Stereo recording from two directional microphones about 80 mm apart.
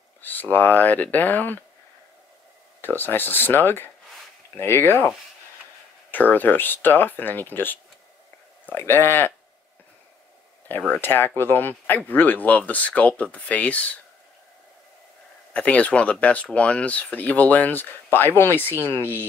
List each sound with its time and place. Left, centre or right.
0.2 s speech: left
2.8 s speech: left
6.1 s speech: left
10.9 s speech: left
15.5 s speech: centre